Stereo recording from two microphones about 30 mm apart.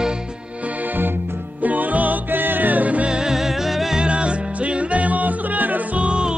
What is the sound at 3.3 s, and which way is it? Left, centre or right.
Music, centre.